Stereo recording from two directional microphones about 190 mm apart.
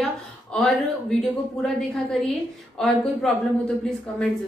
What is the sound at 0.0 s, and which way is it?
Speech, 5° left (ahead or behind).